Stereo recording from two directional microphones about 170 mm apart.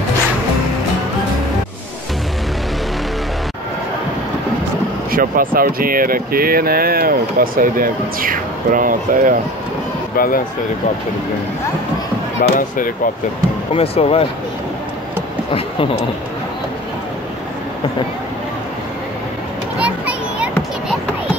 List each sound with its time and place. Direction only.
5.1 s speech: 55° right (ahead or behind)
10.1 s speech: 55° left (ahead or behind)
12.4 s speech: 55° left (ahead or behind)
13.7 s speech: 35° left (ahead or behind)
19.8 s children playing: 10° right (ahead or behind)